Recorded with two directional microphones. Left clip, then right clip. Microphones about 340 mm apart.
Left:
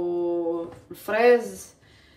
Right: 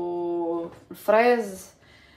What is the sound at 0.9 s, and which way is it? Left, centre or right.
Speech, centre.